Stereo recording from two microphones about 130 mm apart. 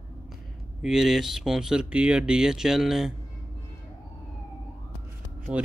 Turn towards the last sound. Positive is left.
turn(degrees=-10)  # may be behind; listen again after turning